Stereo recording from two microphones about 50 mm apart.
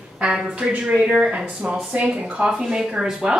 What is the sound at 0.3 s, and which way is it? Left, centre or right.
Speech, centre.